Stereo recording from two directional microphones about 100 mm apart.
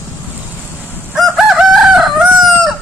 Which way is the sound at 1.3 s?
5° right (ahead or behind).